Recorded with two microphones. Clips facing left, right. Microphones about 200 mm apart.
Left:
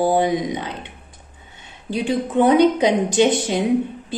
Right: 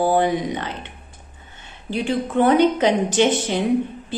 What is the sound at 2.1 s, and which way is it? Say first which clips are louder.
A woman's voice: left 1 dB; 15° left (ahead or behind).